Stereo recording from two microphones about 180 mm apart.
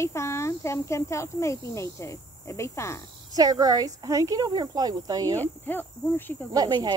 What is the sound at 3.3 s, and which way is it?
A woman's voice, 20° right (ahead or behind).